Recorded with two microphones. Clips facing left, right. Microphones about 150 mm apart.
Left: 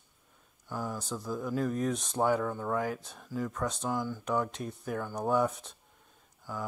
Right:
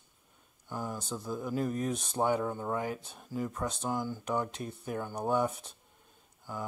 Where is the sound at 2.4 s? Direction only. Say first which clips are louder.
Left 1 dB; 20° right (ahead or behind).